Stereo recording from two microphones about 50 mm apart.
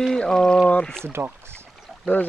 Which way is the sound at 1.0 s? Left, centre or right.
Right.